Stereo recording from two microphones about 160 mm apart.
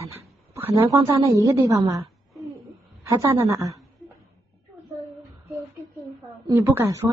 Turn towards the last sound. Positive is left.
turn(degrees=-15)  # may be behind; listen again after turning